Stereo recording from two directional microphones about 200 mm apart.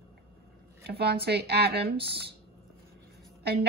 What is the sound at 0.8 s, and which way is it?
Speech, 55° right (ahead or behind).